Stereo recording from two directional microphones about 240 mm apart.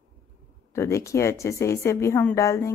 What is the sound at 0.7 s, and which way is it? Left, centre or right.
Speech, centre.